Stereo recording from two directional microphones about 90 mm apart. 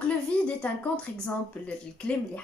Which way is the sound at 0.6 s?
15° left (ahead or behind).